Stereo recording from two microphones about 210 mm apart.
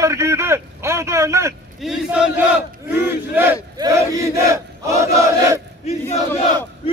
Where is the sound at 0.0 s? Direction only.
15° right (ahead or behind).